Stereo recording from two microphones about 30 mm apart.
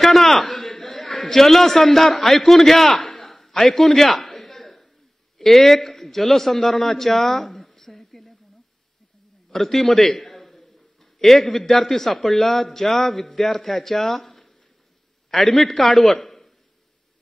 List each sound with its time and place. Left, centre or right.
0.0 s chuckle: centre
1.2 s a man's voice: centre
9.5 s a man's voice: centre
11.0 s a sound: centre
11.5 s a man's voice: centre
16.3 s a sound: left